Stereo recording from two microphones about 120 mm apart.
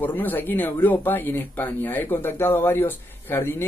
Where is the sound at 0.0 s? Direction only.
15° left (ahead or behind).